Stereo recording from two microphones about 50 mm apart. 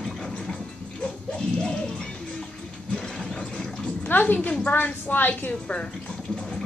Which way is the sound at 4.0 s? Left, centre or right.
Left.